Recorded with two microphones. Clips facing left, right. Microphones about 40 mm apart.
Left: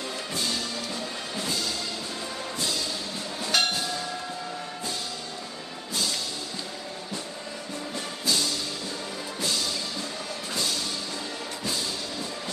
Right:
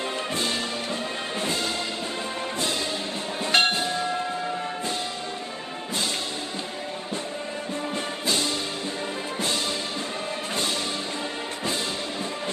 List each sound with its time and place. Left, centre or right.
1.4 s music: right
3.5 s music: right
8.3 s music: right